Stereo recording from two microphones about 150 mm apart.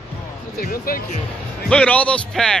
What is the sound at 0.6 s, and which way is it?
Speech, 70° left (ahead or behind).